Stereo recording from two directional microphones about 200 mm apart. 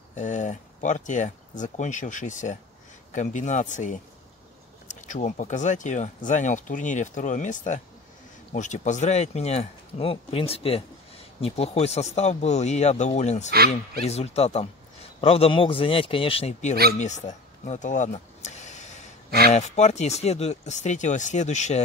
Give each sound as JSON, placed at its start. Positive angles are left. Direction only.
{"t": 0.1, "sound": "speech", "side_deg": 35}
{"t": 5.0, "sound": "a man's voice", "side_deg": 40}
{"t": 17.0, "sound": "vehicle", "side_deg": 35}
{"t": 19.5, "sound": "speech", "side_deg": 35}